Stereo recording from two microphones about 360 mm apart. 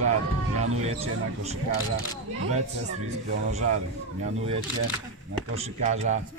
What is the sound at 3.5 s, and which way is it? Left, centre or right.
Speech, centre.